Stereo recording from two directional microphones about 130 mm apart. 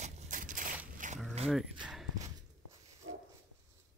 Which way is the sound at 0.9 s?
75° right (ahead or behind).